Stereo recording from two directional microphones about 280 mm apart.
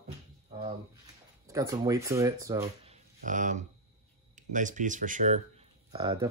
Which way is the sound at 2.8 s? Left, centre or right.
Right.